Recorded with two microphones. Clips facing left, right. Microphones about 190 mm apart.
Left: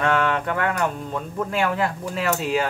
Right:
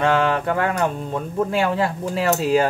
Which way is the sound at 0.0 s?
30° right (ahead or behind).